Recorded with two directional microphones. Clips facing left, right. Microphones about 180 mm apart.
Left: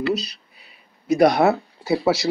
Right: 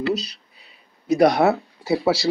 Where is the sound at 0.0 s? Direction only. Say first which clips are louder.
Even; 30° right (ahead or behind).